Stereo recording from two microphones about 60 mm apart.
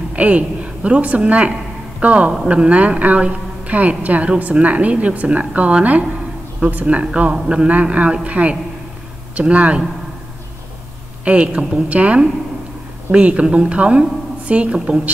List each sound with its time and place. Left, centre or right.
0.1 s a woman's voice: right
11.2 s a man's voice: right